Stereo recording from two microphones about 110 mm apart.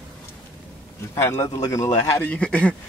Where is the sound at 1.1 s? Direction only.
25° left (ahead or behind).